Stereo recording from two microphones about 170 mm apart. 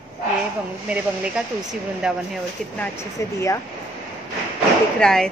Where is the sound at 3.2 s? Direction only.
15° left (ahead or behind).